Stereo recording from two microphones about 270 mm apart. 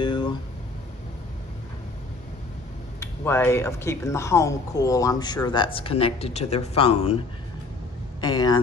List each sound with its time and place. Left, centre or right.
0.0 s a sound: centre
3.0 s speech: centre
8.2 s speech: centre